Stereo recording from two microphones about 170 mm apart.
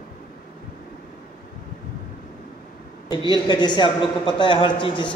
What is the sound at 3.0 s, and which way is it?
A man's voice, 25° left (ahead or behind).